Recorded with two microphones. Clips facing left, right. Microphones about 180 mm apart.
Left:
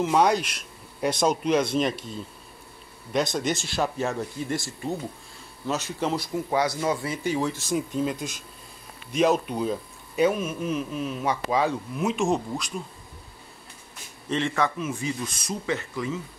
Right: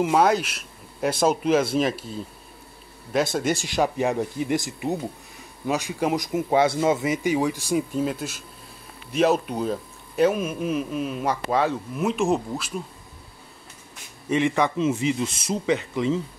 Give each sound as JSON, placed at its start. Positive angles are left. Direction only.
{"t": 0.0, "sound": "a man's voice", "side_deg": -5}
{"t": 14.3, "sound": "a man's voice", "side_deg": -15}